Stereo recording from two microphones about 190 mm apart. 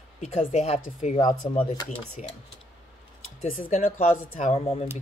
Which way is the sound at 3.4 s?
40° left (ahead or behind).